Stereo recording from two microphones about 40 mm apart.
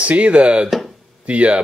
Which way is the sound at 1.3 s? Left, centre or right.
Right.